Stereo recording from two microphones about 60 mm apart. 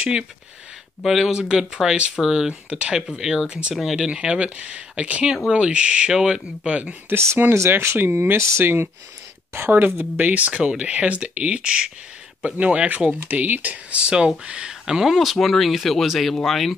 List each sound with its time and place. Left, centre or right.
1.0 s speech: centre
4.1 s speech: centre
6.6 s speech: right
7.1 s speech: right; by 15.1 s centre
15.1 s speech: centre